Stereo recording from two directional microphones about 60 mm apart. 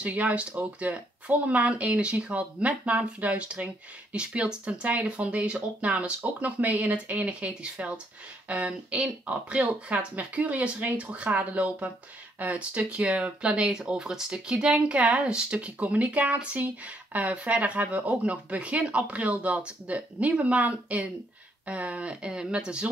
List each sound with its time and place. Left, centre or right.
0.0 s speech: right